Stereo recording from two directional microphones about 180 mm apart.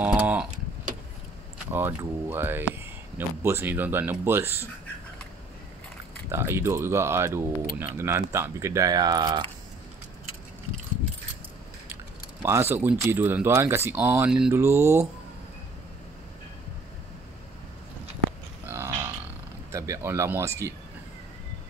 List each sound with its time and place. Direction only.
0.0 s a sound: 10° right (ahead or behind)
1.7 s speech: 10° right (ahead or behind)
6.3 s speech: 15° right (ahead or behind)
12.4 s speech: 15° right (ahead or behind)
18.7 s grunt: 15° right (ahead or behind)
19.7 s speech: 15° right (ahead or behind)